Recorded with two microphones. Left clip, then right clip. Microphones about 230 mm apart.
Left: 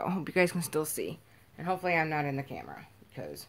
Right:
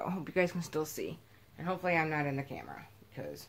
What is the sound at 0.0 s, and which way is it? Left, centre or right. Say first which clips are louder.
Speech: left 4 dB; left.